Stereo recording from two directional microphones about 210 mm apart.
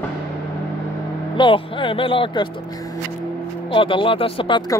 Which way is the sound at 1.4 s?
25° left (ahead or behind).